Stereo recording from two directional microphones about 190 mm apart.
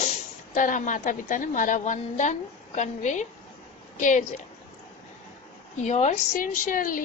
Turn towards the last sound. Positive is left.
turn(degrees=45)  # may be behind; listen again after turning